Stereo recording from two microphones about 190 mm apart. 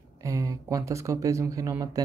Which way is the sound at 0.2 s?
15° right (ahead or behind).